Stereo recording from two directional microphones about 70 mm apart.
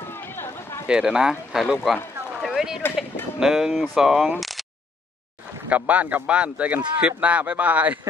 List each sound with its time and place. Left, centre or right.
0.4 s run: left
0.8 s speech: centre
2.4 s a sound: centre
3.3 s speech: centre
4.4 s a sound: centre
5.7 s a man's voice: right